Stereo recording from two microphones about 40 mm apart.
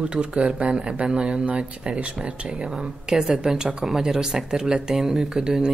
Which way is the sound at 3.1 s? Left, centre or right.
Centre.